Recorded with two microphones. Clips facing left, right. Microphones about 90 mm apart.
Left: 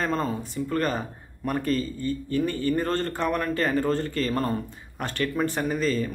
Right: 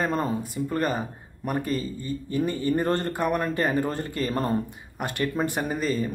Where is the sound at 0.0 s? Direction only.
15° right (ahead or behind).